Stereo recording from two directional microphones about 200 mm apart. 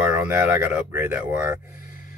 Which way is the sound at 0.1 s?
10° right (ahead or behind).